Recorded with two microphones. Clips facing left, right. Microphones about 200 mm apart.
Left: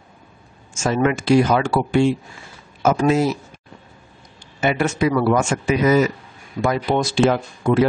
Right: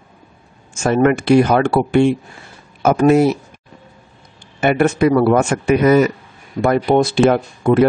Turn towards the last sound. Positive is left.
turn(degrees=-55)  # may be behind; listen again after turning